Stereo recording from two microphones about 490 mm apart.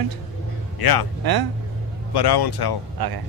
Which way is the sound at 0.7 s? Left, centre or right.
Left.